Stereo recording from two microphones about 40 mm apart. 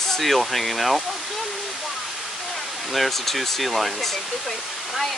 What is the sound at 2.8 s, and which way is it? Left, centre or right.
Speech, centre.